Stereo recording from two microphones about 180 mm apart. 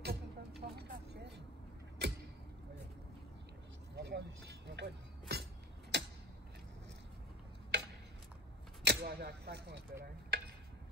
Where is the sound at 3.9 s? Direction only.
70° right (ahead or behind).